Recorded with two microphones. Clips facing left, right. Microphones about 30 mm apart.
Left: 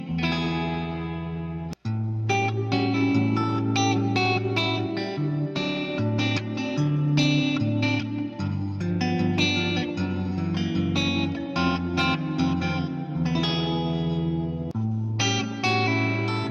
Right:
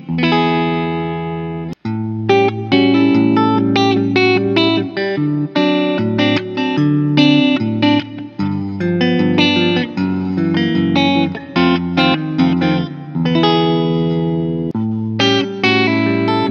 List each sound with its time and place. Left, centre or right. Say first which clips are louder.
0.1 s music: right 13 dB; right
2.2 s music: right 12 dB; right